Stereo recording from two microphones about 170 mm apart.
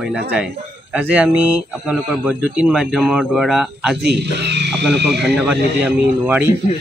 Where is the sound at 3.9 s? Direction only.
80° right.